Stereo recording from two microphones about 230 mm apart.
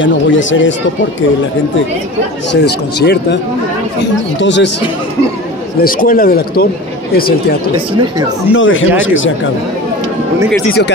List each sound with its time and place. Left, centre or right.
0.0 s speech: left
2.5 s speech: left
4.4 s speech: left
5.8 s a man's voice: left
8.5 s speech: left